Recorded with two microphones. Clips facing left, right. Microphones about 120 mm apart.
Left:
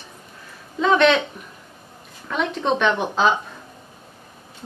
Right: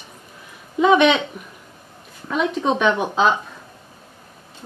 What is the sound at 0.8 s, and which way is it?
Speech, 15° right (ahead or behind).